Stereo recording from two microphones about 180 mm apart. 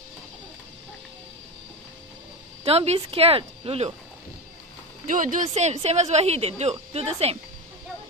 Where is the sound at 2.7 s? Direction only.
35° right (ahead or behind).